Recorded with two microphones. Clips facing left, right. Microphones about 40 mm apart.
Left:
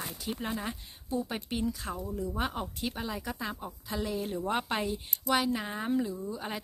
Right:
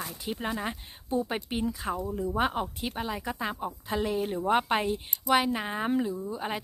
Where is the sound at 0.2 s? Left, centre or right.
Centre.